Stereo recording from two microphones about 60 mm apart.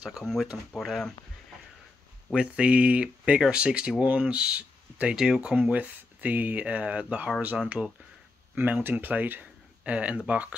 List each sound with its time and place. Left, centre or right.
0.2 s speech: centre
2.3 s speech: centre
7.8 s speech: centre
8.5 s speech: right